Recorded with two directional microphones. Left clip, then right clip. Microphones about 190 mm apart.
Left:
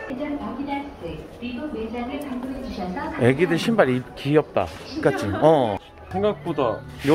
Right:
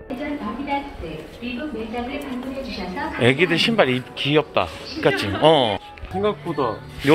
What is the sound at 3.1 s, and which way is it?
Speech, 15° left (ahead or behind).